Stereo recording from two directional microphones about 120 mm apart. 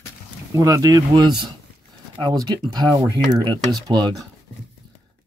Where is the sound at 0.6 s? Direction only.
30° right (ahead or behind).